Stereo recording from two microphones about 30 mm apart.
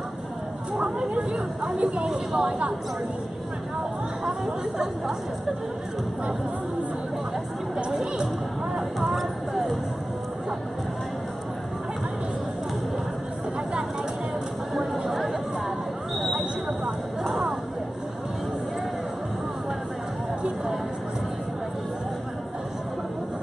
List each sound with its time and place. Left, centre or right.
1.1 s speech: right
2.0 s speech: right
4.5 s speech: centre
7.7 s speech: centre
9.0 s a sound: centre
15.0 s chatter: centre